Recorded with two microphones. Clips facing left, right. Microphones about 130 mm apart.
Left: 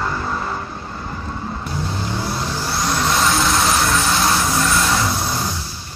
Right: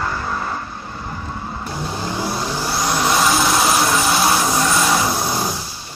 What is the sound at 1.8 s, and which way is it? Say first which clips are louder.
Vehicle: right 2 dB; 5° right (ahead or behind).